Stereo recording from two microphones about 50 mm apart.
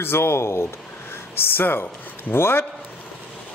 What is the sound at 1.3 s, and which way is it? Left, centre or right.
A woman's voice, left.